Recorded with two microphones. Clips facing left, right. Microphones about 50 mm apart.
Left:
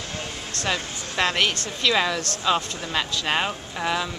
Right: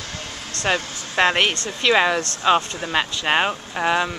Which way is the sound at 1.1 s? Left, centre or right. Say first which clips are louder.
Right 4 dB; right.